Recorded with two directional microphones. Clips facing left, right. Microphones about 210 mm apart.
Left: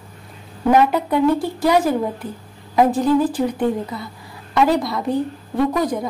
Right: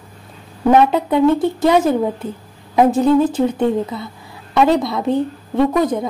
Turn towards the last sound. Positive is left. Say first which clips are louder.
# right 3 dB
turn(degrees=-25)  # may be behind; listen again after turning